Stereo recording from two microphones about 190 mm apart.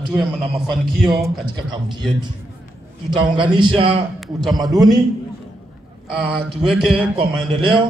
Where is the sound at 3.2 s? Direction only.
25° right (ahead or behind).